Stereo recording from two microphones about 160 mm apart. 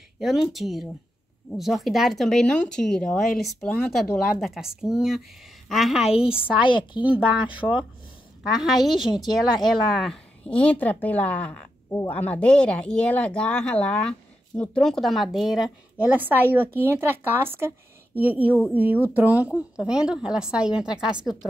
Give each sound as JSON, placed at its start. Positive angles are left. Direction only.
{"t": 0.2, "sound": "a woman's voice", "side_deg": 0}
{"t": 6.0, "sound": "a woman's voice", "side_deg": 35}
{"t": 7.0, "sound": "a woman's voice", "side_deg": -10}
{"t": 8.8, "sound": "a woman's voice", "side_deg": 0}